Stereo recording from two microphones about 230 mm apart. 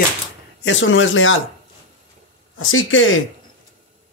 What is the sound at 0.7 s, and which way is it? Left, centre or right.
Speech, left.